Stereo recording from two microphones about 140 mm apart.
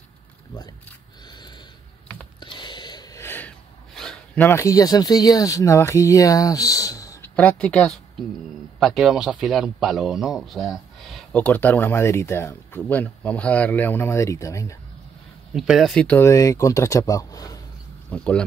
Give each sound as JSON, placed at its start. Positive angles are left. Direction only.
{"t": 2.4, "sound": "filing", "side_deg": 35}
{"t": 4.5, "sound": "speech", "side_deg": 20}
{"t": 7.3, "sound": "speech", "side_deg": 10}
{"t": 15.5, "sound": "speech", "side_deg": 0}
{"t": 16.2, "sound": "speech", "side_deg": 20}
{"t": 18.1, "sound": "speech", "side_deg": 5}